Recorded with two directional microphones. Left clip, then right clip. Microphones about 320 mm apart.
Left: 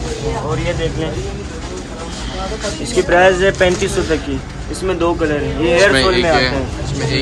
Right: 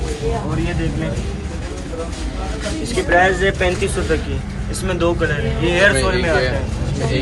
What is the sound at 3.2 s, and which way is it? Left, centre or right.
Speech, left.